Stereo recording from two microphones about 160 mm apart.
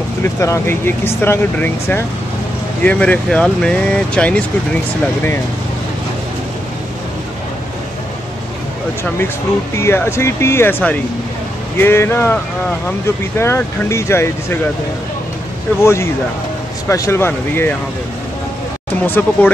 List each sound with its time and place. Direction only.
0.2 s speech: 15° left (ahead or behind)
9.8 s speech: 15° left (ahead or behind)
13.4 s speech: 15° left (ahead or behind)
15.8 s speech: 15° left (ahead or behind)
19.0 s speech: 10° left (ahead or behind)